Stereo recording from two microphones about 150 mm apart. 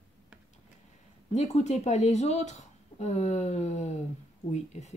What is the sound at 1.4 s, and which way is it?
Speech, 50° left (ahead or behind).